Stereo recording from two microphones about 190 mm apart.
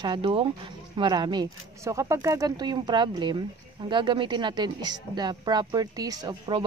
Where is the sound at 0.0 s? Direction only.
25° right (ahead or behind).